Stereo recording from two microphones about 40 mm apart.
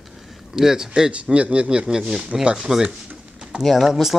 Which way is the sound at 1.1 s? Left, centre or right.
Right.